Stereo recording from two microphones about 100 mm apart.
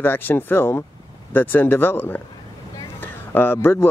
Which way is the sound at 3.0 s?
20° left (ahead or behind).